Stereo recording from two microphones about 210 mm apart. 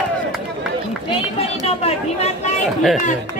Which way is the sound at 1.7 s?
30° left (ahead or behind).